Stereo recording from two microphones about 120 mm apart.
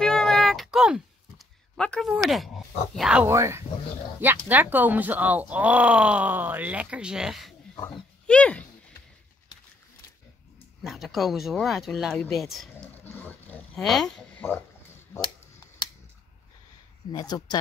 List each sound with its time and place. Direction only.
0.0 s a sound: 5° left (ahead or behind)
1.8 s speech: 5° left (ahead or behind)
3.3 s speech: 25° right (ahead or behind); by 7.5 s 5° right (ahead or behind)
8.3 s speech: 10° left (ahead or behind)
10.8 s speech: centre (ahead or behind)
13.0 s roaring cats: 15° left (ahead or behind)
13.7 s speech: centre (ahead or behind)
17.1 s speech: 35° left (ahead or behind)